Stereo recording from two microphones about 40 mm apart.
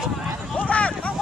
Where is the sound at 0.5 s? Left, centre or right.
Left.